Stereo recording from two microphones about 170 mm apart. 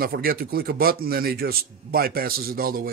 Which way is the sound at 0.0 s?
60° right (ahead or behind).